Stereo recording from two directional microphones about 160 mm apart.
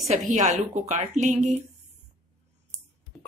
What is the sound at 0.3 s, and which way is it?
Speech, 50° right (ahead or behind).